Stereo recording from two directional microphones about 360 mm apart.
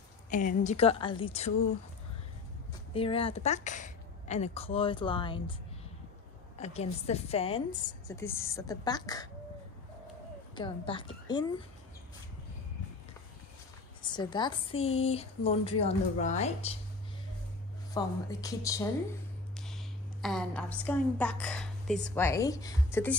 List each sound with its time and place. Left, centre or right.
0.3 s speech: left
2.9 s speech: centre
6.6 s speech: centre
10.5 s speech: centre
14.0 s speech: centre
17.9 s a woman's voice: centre